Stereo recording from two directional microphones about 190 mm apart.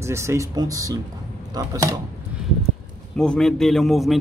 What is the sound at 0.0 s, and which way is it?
Speech, 15° right (ahead or behind).